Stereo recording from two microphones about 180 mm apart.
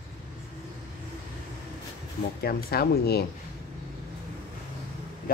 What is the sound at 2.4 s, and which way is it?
Speech, 60° left (ahead or behind).